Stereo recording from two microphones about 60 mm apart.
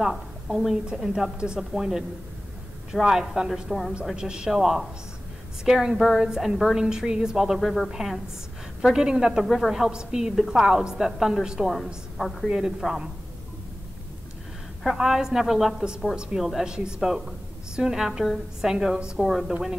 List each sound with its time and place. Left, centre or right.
0.0 s a woman's voice: centre
12.4 s a woman's voice: centre
14.8 s a woman's voice: centre